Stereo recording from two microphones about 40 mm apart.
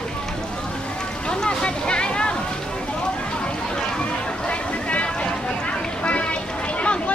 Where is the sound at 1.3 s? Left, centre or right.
Left.